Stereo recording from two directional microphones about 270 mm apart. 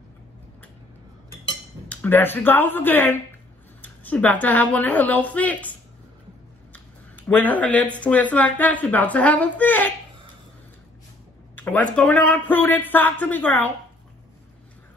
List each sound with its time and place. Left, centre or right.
1.9 s a man's voice: centre
11.5 s a man's voice: centre